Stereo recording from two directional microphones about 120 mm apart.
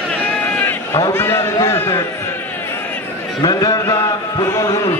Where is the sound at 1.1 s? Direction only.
20° left (ahead or behind).